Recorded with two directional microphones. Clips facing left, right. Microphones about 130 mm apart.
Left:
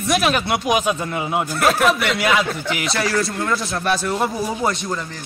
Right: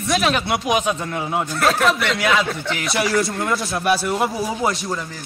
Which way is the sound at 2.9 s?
20° right (ahead or behind).